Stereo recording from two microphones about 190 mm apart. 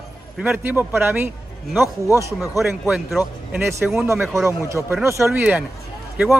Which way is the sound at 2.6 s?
Centre (ahead or behind).